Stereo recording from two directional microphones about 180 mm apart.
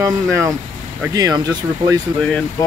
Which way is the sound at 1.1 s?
20° right (ahead or behind).